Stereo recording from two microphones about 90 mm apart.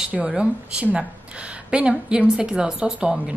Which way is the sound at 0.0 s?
15° right (ahead or behind).